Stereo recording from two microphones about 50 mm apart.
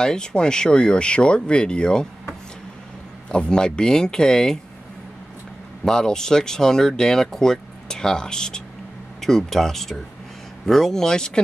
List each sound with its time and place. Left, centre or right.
0.0 s speech: centre
3.3 s speech: centre
5.9 s speech: centre